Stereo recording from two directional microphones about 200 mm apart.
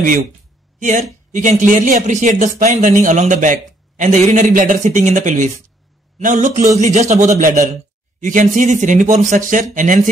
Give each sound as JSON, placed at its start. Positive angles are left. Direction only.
{"t": 0.7, "sound": "a man's voice", "side_deg": -40}